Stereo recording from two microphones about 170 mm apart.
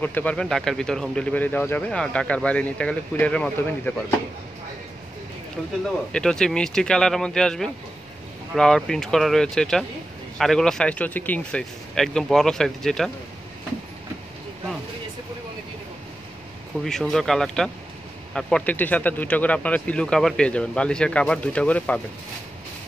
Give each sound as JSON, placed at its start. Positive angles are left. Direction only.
{"t": 0.0, "sound": "speech", "side_deg": 10}
{"t": 6.1, "sound": "speech", "side_deg": 5}
{"t": 16.8, "sound": "speech", "side_deg": 5}